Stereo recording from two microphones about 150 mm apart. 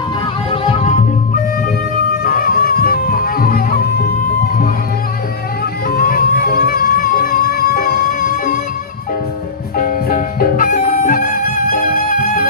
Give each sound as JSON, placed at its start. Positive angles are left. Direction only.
{"t": 0.5, "sound": "music", "side_deg": 40}
{"t": 2.2, "sound": "music", "side_deg": 75}
{"t": 5.9, "sound": "music", "side_deg": 75}
{"t": 9.8, "sound": "music", "side_deg": 70}